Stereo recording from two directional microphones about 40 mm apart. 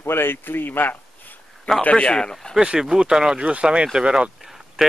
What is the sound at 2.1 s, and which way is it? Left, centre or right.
Speech, centre.